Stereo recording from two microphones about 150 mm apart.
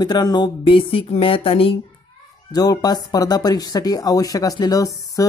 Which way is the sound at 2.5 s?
25° left (ahead or behind).